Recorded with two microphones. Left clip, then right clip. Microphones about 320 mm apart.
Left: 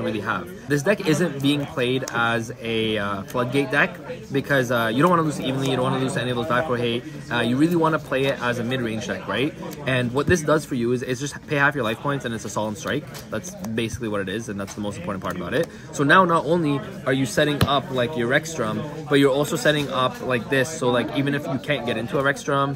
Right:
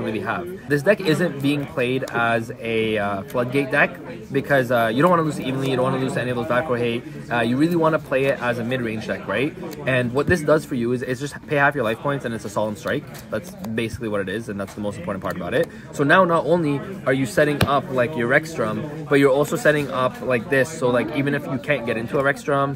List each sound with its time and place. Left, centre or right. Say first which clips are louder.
0.3 s speech: right 3 dB; centre